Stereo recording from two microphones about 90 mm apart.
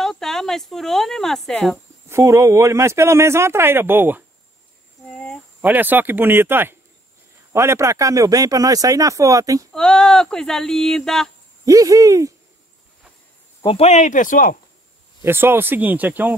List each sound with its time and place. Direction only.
0.0 s speech: 5° left (ahead or behind)
2.0 s speech: 35° right (ahead or behind)
5.6 s speech: 20° right (ahead or behind); by 9.7 s 40° right (ahead or behind)
9.7 s speech: 10° left (ahead or behind)
11.6 s speech: 40° right (ahead or behind)
15.2 s speech: 25° right (ahead or behind)